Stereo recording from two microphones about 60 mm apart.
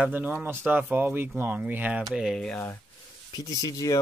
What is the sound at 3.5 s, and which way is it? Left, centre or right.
Speech, left.